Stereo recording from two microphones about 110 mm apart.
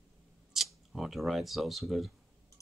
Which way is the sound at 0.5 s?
Centre (ahead or behind).